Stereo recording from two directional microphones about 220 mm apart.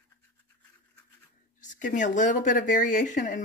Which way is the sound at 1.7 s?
35° left (ahead or behind).